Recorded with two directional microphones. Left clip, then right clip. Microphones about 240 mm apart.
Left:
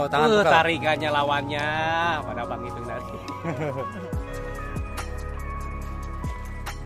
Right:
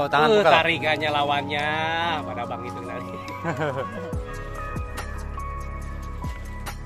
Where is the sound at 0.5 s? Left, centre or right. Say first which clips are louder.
Even; centre.